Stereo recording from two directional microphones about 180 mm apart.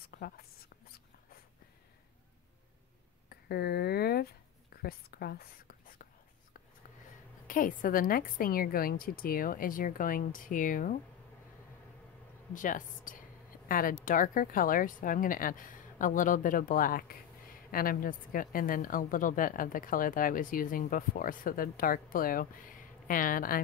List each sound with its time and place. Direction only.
3.3 s a sound: 60° left (ahead or behind)
4.8 s whispering: 60° left (ahead or behind)
7.4 s speech: 50° left (ahead or behind)
12.5 s speech: 45° left (ahead or behind)